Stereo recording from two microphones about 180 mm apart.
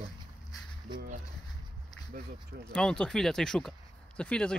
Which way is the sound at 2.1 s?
50° right (ahead or behind).